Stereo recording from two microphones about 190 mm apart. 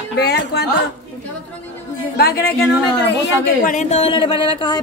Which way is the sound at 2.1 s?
55° left (ahead or behind).